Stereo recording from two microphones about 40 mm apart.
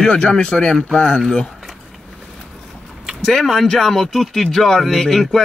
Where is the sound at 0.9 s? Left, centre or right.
Left.